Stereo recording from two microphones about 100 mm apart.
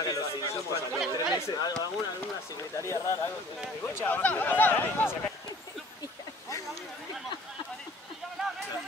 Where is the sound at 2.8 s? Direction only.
30° left (ahead or behind).